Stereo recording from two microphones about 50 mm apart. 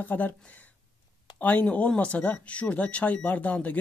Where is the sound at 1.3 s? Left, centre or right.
Left.